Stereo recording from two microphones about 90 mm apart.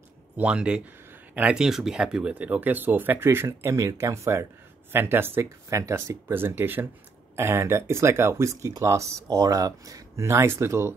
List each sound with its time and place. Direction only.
0.4 s speech: 10° right (ahead or behind); by 10.9 s 30° right (ahead or behind)